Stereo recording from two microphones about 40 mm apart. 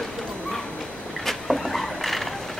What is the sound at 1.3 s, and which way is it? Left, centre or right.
Vehicle, centre.